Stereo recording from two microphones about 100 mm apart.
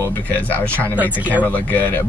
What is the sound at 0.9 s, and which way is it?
Speech, 15° right (ahead or behind).